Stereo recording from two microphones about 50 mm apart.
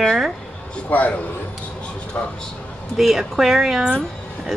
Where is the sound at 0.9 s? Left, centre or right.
Left.